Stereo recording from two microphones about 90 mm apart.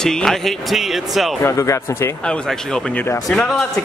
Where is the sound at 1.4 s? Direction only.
35° left (ahead or behind).